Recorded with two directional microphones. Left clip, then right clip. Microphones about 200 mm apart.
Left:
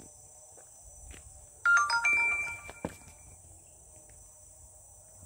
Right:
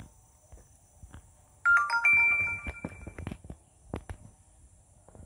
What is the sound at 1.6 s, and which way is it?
Ringtone, 25° right (ahead or behind).